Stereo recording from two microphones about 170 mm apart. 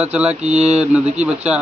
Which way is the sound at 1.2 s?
5° right (ahead or behind).